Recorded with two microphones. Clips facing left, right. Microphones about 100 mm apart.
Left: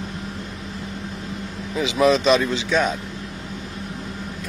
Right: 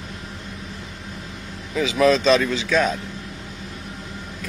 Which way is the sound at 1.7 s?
20° left (ahead or behind).